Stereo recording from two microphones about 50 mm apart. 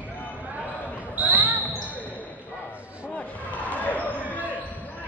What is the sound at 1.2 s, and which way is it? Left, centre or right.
Basketball bounce, right.